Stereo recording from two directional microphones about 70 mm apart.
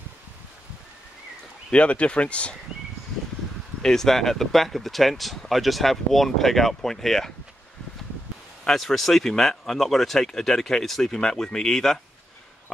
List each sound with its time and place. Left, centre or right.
1.7 s speech: centre
3.8 s speech: centre
8.6 s speech: centre